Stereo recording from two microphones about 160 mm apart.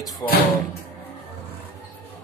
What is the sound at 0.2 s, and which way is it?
Speech, 15° left (ahead or behind).